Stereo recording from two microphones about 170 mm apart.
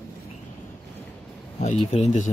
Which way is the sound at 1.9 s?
40° left (ahead or behind).